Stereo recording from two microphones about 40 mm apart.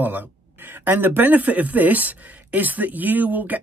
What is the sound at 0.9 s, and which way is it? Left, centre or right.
Speech, right.